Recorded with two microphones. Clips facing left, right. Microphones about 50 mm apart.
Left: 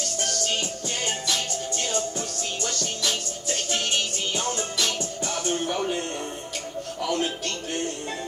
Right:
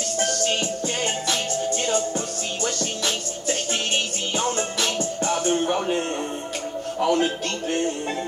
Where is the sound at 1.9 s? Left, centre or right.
Right.